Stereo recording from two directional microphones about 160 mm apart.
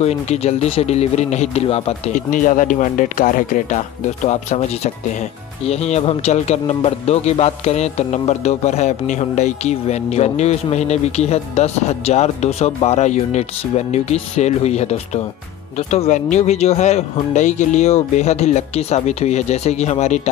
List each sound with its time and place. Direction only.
0.0 s speech: 40° left (ahead or behind)
2.1 s speech: 55° left (ahead or behind)
4.3 s a man's voice: 45° left (ahead or behind)